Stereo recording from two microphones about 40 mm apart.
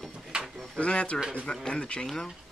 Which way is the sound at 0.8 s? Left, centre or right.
Left.